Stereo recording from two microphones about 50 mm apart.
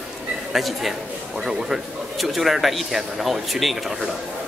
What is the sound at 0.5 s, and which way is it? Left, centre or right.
Speech, centre.